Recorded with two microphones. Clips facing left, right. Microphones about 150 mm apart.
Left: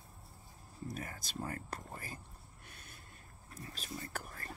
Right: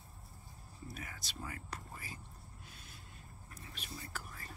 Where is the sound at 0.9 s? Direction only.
40° left (ahead or behind).